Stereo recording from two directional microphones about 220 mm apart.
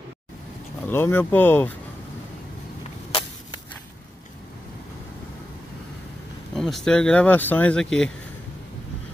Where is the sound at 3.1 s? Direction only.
25° left (ahead or behind).